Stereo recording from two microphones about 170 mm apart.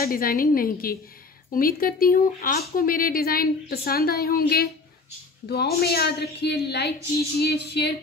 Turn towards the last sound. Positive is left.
turn(degrees=75)  # may be behind; listen again after turning